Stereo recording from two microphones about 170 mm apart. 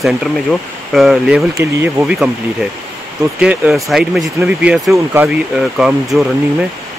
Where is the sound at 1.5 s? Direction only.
15° right (ahead or behind).